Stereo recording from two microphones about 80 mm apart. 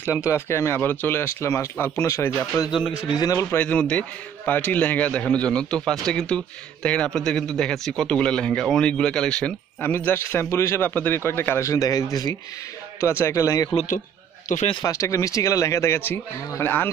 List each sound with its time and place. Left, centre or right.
0.2 s speech: left
3.2 s speech: left
3.5 s speech: centre
9.8 s a man's voice: left
10.9 s a man's voice: left
11.7 s speech: left
13.0 s speech: left
14.9 s a man's voice: left